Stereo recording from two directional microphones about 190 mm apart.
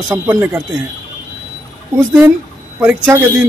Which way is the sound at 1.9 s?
10° right (ahead or behind).